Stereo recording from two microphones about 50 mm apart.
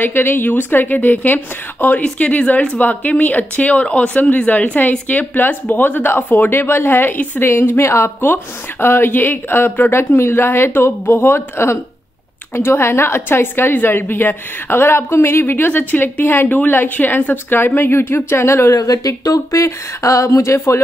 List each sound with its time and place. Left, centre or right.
0.0 s a woman's voice: left
8.2 s a woman's voice: left
19.5 s speech: left